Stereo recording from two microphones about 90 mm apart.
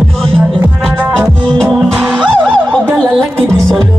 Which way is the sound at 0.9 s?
15° right (ahead or behind).